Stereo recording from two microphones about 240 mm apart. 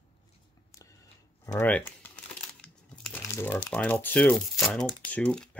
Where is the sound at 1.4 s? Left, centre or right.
Centre.